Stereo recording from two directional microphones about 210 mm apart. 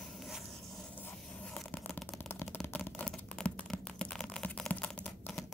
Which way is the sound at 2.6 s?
5° left (ahead or behind).